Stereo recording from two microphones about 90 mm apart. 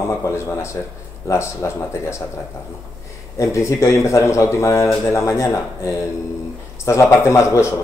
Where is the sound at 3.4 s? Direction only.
35° left (ahead or behind).